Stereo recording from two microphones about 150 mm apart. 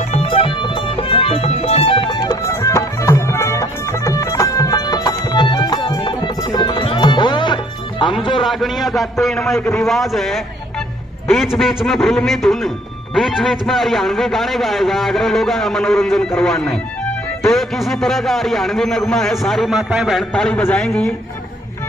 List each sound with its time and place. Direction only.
0.1 s music: 40° left (ahead or behind)
2.4 s music: 20° left (ahead or behind)
8.2 s a sound: 35° left (ahead or behind)
8.5 s a man's voice: centre (ahead or behind)